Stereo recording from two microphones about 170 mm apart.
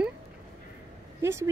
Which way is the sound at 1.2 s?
15° right (ahead or behind).